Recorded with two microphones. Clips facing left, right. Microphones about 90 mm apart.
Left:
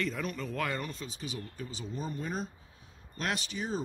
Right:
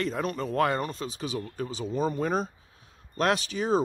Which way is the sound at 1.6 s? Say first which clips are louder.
Right 13 dB; 65° right (ahead or behind).